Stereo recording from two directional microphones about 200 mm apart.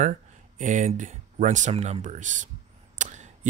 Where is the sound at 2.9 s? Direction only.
35° right (ahead or behind).